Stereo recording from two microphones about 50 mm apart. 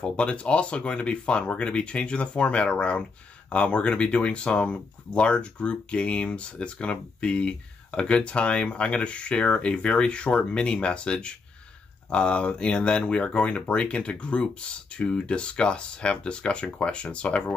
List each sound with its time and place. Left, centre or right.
0.0 s speech: left